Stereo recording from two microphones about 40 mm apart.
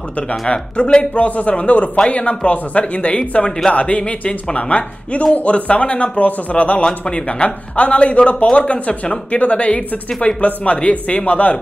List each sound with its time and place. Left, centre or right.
0.3 s a man's voice: left